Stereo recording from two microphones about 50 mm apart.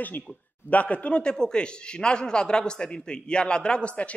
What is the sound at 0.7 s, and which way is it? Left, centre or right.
Speech, left.